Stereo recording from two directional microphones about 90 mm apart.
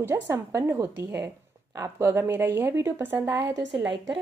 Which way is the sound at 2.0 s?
25° right (ahead or behind).